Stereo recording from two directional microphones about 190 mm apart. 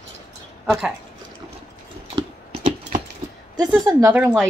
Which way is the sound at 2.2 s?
30° right (ahead or behind).